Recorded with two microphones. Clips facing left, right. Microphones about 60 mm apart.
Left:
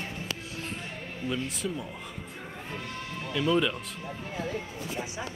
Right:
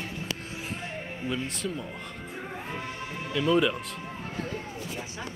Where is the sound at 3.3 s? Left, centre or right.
Centre.